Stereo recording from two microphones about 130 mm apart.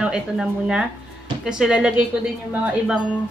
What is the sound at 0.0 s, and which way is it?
A woman's voice, 5° right (ahead or behind).